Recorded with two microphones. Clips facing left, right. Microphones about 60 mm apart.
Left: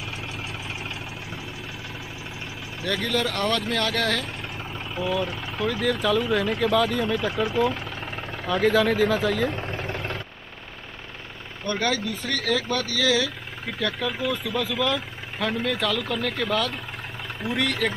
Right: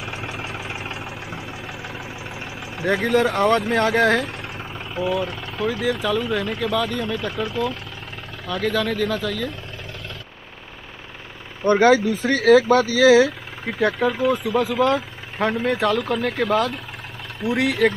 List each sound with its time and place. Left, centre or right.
0.0 s vehicle: right
2.8 s speech: right
4.9 s speech: centre
9.6 s vehicle: left
11.6 s speech: right
14.1 s speech: centre